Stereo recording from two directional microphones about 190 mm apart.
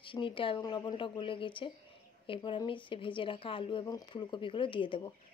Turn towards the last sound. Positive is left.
turn(degrees=25)  # may be behind; listen again after turning